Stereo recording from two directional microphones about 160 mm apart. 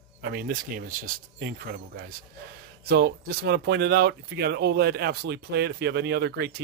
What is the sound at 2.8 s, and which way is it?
Speech, 85° right.